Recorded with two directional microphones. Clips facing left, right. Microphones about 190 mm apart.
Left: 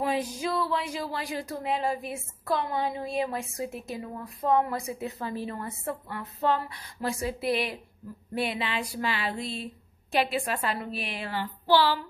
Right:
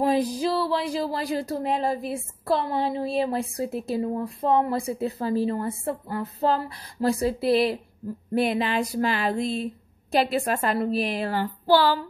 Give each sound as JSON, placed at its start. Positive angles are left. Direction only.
{"t": 0.0, "sound": "speech", "side_deg": -35}
{"t": 8.4, "sound": "a sound", "side_deg": -45}
{"t": 10.1, "sound": "speech", "side_deg": -40}